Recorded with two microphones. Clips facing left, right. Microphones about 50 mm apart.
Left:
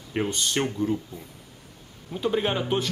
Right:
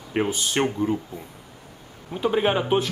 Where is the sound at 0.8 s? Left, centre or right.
Centre.